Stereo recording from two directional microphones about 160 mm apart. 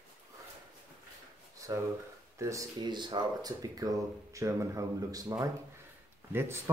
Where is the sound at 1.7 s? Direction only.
25° right (ahead or behind).